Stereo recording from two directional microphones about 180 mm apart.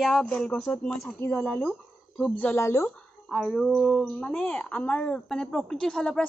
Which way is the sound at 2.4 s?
15° left (ahead or behind).